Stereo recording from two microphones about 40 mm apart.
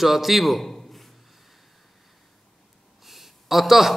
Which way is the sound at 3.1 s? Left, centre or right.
Centre.